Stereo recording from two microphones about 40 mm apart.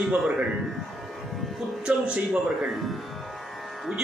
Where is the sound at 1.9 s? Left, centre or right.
Right.